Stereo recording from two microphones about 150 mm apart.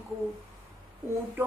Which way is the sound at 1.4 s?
15° right (ahead or behind).